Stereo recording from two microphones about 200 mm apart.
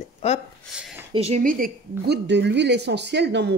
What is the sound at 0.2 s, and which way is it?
Speech, 30° left (ahead or behind).